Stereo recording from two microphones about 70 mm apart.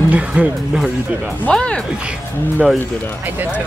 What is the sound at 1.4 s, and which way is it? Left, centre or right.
Speech, centre.